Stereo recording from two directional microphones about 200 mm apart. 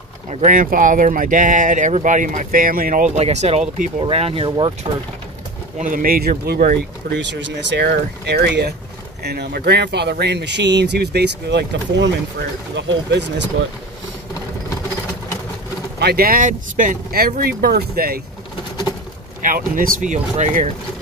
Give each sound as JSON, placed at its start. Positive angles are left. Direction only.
{"t": 0.3, "sound": "speech", "side_deg": -40}
{"t": 5.8, "sound": "speech", "side_deg": -45}
{"t": 16.0, "sound": "speech", "side_deg": -50}
{"t": 19.4, "sound": "speech", "side_deg": -45}